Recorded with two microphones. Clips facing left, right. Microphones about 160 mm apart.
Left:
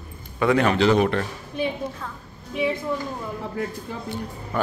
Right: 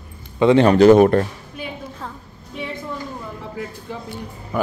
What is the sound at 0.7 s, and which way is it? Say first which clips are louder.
Speech: right 8 dB; 45° right (ahead or behind).